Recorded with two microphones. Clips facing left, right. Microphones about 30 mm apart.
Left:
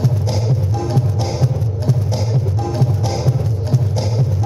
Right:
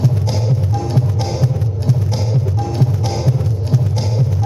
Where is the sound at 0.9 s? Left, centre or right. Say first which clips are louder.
Right 1 dB; centre.